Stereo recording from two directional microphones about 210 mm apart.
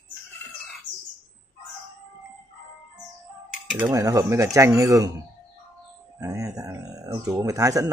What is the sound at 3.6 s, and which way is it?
Speech, 10° right (ahead or behind).